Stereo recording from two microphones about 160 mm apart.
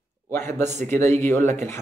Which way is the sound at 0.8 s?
15° left (ahead or behind).